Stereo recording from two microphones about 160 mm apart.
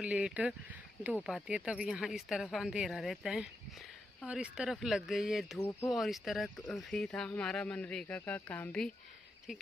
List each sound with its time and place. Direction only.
0.0 s speech: 5° right (ahead or behind)
5.7 s speech: 20° left (ahead or behind)
5.9 s speech: centre (ahead or behind)